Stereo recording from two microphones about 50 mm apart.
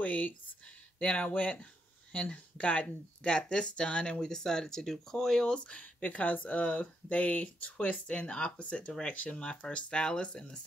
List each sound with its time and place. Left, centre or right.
0.0 s a sound: left
0.9 s speech: left
5.6 s speech: left